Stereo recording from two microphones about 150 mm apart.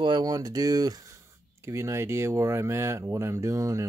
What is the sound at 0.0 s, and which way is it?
Speech, 30° right (ahead or behind).